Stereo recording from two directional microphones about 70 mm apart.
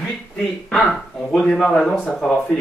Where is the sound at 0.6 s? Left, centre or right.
Centre.